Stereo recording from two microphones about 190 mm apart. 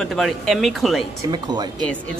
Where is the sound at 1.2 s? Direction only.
20° right (ahead or behind).